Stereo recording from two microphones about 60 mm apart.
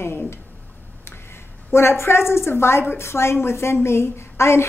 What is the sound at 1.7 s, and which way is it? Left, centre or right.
A woman's voice, left.